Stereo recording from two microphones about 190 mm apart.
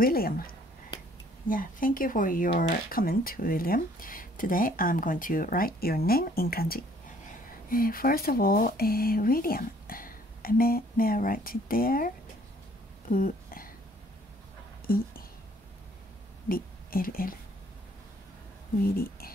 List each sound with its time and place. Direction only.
0.0 s speech: 50° left (ahead or behind)
1.5 s speech: 45° left (ahead or behind)
13.1 s speech: 45° left (ahead or behind)
16.4 s a woman's voice: 50° left (ahead or behind)
18.9 s speech: 50° left (ahead or behind)